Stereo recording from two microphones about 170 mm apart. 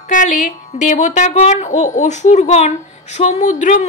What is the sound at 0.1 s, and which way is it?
A woman's voice, 50° left (ahead or behind).